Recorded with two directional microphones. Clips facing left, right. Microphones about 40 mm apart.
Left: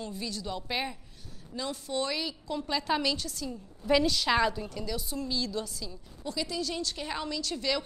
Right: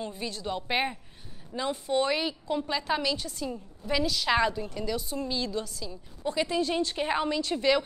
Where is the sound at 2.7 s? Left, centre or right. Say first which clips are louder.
Left 2 dB; centre.